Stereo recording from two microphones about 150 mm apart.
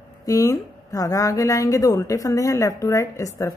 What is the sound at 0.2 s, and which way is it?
Speech, 20° left (ahead or behind).